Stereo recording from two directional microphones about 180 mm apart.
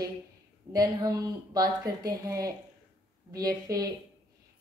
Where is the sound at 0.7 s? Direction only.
20° right (ahead or behind).